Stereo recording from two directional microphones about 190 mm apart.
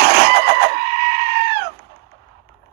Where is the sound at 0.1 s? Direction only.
55° right (ahead or behind).